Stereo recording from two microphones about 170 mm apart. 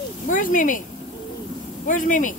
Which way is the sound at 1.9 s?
50° left (ahead or behind).